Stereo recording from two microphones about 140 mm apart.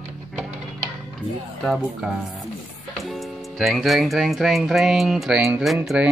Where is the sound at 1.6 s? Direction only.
Centre (ahead or behind).